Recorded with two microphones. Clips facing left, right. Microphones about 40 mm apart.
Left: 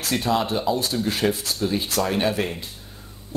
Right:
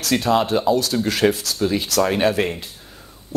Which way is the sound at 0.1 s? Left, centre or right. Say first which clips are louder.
Right 5 dB; right.